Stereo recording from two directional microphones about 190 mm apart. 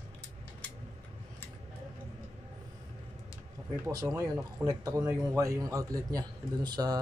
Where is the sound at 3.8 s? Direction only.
15° right (ahead or behind).